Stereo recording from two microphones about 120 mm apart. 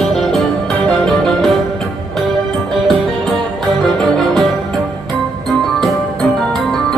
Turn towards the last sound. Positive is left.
turn(degrees=5)  # may be behind; listen again after turning